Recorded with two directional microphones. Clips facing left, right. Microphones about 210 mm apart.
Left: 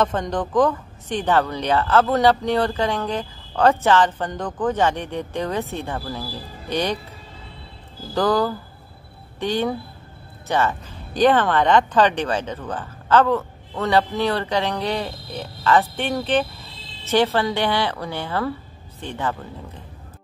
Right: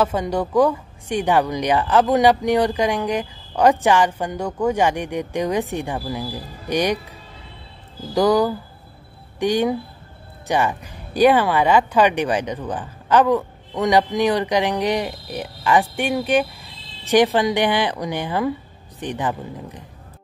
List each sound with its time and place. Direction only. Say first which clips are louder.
0.0 s speech: right 2 dB; 10° right (ahead or behind)
8.1 s speech: right 3 dB; 15° right (ahead or behind)